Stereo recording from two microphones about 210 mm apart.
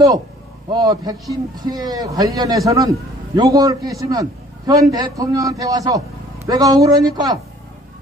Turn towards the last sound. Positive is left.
turn(degrees=-20)  # may be behind; listen again after turning